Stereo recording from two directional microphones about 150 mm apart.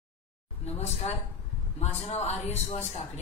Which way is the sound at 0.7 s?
45° left (ahead or behind).